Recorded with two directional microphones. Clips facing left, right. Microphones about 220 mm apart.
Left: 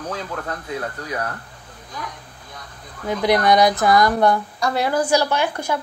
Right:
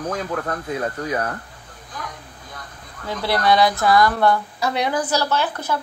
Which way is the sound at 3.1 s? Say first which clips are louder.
Left 3 dB; 15° left (ahead or behind).